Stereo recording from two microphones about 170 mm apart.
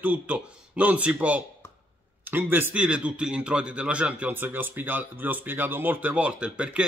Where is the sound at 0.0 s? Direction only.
10° right (ahead or behind).